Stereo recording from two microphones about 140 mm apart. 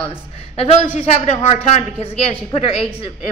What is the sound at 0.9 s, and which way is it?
Speech, 50° left (ahead or behind).